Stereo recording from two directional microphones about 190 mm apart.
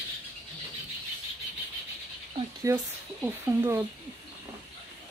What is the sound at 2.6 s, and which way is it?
Speech, 10° right (ahead or behind).